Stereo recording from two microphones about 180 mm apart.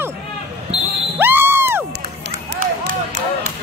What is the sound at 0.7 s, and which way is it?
Basketball bounce, 10° right (ahead or behind).